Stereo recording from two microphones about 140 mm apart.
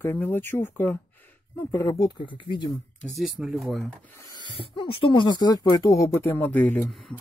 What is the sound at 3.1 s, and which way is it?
Speech, centre (ahead or behind).